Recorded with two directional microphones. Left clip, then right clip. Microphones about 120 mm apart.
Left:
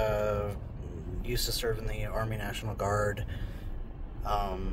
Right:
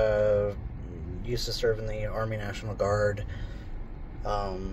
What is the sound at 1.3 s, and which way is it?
Speech, 25° left (ahead or behind).